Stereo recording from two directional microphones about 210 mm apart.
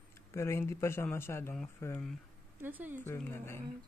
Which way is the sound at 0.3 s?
15° left (ahead or behind).